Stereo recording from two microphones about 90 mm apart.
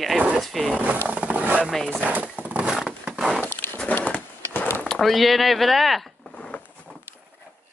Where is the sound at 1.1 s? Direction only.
15° right (ahead or behind).